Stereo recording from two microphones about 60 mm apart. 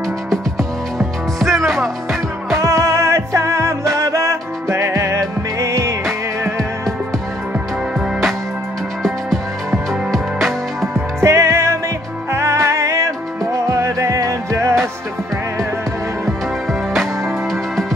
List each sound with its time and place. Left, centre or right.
0.9 s music: centre
2.5 s music: right
9.0 s music: centre
11.1 s music: right